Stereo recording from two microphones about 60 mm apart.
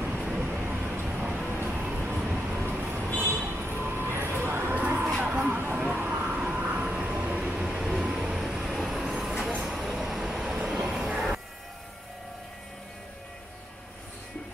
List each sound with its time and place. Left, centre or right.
0.2 s vehicle: centre
0.6 s vehicle: right
1.0 s vehicle: centre
1.5 s vehicle: right
1.9 s vehicle: right
3.7 s a sound: right
6.3 s vehicle: right; by 11.1 s centre
11.1 s music: centre